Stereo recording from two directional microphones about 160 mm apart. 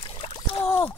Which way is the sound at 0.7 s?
10° left (ahead or behind).